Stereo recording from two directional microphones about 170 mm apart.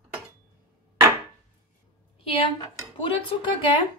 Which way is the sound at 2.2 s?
35° left (ahead or behind).